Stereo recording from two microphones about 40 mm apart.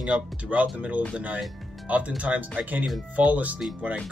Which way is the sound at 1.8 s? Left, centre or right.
Right.